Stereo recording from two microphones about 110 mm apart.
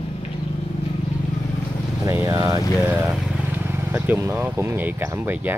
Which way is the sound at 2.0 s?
30° right (ahead or behind).